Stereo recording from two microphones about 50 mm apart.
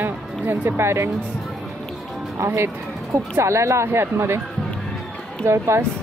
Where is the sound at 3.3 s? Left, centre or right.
Right.